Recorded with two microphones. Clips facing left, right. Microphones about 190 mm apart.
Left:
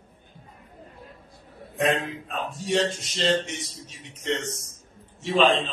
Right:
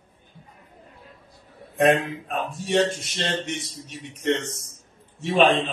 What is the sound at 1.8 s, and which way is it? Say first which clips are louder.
Speech: right 5 dB; 55° right (ahead or behind).